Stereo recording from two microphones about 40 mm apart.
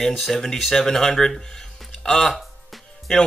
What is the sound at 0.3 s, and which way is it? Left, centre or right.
Speech, centre.